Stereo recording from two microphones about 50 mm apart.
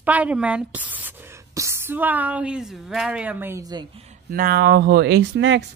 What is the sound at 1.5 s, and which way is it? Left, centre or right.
Speech, right.